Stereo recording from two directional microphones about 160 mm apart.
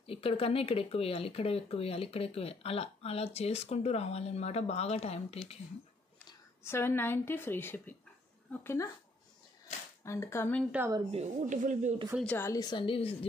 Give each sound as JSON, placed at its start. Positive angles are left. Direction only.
{"t": 0.0, "sound": "speech", "side_deg": 35}
{"t": 6.6, "sound": "a woman's voice", "side_deg": 15}
{"t": 10.0, "sound": "a woman's voice", "side_deg": 20}
{"t": 11.1, "sound": "speech", "side_deg": -45}
{"t": 12.4, "sound": "speech", "side_deg": 20}